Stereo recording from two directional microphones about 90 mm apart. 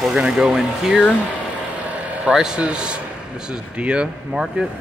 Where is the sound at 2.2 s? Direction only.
10° right (ahead or behind).